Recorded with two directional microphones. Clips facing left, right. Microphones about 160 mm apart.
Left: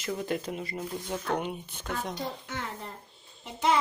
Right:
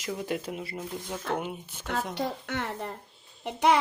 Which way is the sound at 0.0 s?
10° right (ahead or behind).